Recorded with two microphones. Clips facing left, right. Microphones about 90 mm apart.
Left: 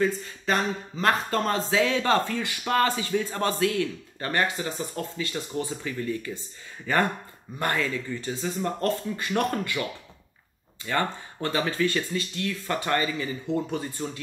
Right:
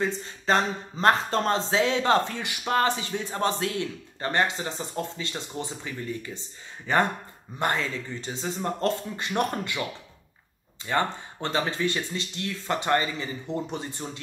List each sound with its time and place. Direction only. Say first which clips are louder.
0.0 s speech: left 3 dB; 25° right (ahead or behind)
10.9 s speech: right 1 dB; 25° right (ahead or behind)